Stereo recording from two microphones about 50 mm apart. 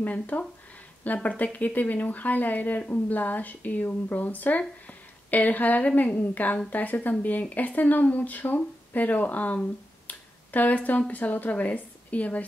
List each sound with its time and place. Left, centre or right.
0.0 s a woman's voice: left